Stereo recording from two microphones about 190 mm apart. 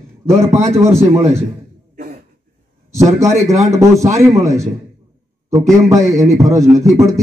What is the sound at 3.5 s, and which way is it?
A man's voice, 15° right (ahead or behind).